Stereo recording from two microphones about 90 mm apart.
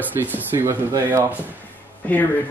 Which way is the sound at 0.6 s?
35° right (ahead or behind).